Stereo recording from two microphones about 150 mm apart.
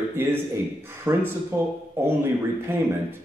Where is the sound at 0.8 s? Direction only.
15° right (ahead or behind).